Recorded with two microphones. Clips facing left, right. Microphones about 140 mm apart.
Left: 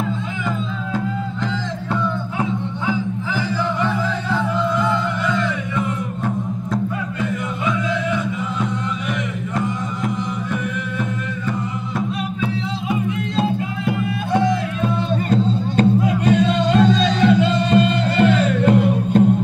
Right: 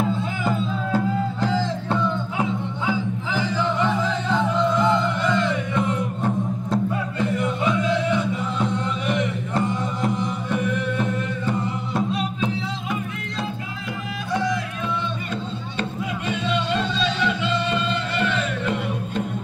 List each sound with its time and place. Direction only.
0.5 s music: 35° right (ahead or behind)
2.9 s music: 15° right (ahead or behind)
6.7 s music: 25° right (ahead or behind)
14.8 s music: 40° left (ahead or behind)